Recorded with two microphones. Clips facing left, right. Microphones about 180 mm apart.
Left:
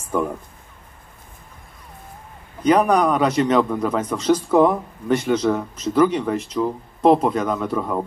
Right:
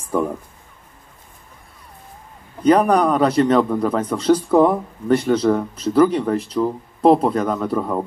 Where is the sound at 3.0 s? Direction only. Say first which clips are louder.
Right 2 dB; 10° left (ahead or behind).